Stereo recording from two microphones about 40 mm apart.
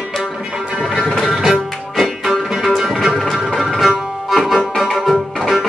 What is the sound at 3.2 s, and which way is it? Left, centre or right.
Music, centre.